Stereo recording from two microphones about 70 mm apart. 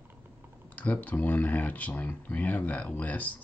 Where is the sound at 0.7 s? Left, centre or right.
Left.